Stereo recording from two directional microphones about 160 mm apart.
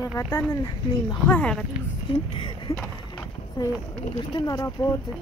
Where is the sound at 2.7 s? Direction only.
20° left (ahead or behind).